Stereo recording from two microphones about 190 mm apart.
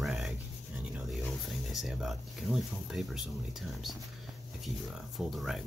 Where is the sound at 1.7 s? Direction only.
Centre (ahead or behind).